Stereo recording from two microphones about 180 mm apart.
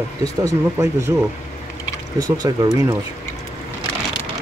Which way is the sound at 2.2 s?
20° right (ahead or behind).